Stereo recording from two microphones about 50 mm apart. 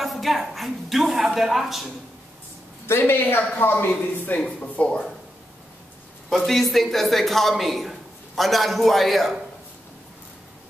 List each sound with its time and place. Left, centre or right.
0.0 s a woman's voice: centre
2.9 s speech: left
4.8 s speech: left
6.3 s a woman's voice: centre